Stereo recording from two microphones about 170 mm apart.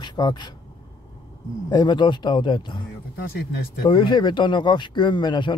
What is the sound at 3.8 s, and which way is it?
Speech, 25° left (ahead or behind).